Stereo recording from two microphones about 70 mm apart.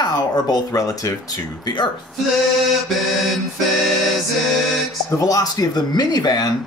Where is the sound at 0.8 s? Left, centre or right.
Left.